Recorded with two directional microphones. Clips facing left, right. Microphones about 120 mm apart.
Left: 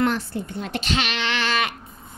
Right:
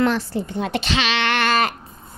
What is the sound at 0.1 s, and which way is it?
Speech, 90° right.